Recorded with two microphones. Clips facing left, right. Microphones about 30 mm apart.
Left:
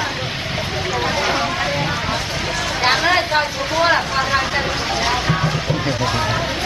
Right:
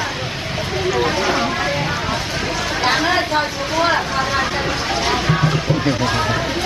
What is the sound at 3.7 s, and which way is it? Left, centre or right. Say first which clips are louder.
Vehicle: left 1 dB; centre.